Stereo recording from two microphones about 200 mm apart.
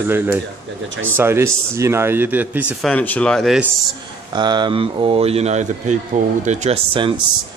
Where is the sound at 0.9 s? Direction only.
80° right.